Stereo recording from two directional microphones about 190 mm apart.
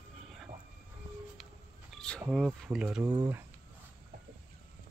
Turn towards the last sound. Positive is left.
turn(degrees=-20)  # may be behind; listen again after turning